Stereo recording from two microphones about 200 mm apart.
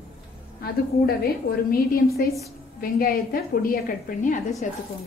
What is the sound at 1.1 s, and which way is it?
A woman's voice, 50° left (ahead or behind).